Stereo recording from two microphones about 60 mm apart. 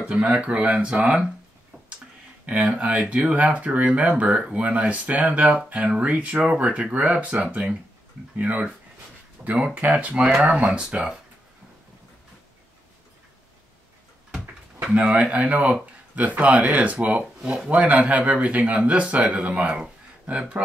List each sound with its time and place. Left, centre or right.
0.1 s speech: centre
2.4 s speech: right
14.9 s speech: centre